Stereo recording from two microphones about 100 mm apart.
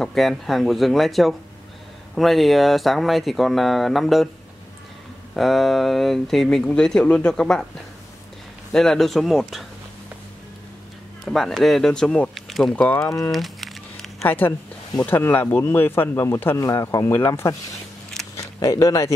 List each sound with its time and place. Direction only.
0.0 s speech: 5° left (ahead or behind)
5.3 s speech: centre (ahead or behind)
8.7 s speech: 5° left (ahead or behind)
11.2 s speech: 5° left (ahead or behind)
12.7 s speech: 10° left (ahead or behind)
13.0 s speech: 35° left (ahead or behind)
13.3 s crumpling: centre (ahead or behind)
14.2 s speech: 20° left (ahead or behind)
18.3 s a sound: 30° left (ahead or behind)